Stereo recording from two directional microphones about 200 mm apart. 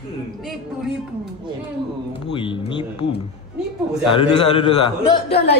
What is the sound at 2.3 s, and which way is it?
Speech, 25° left (ahead or behind).